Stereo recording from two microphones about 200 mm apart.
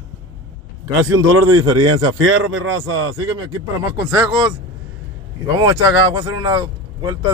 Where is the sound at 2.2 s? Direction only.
75° right (ahead or behind).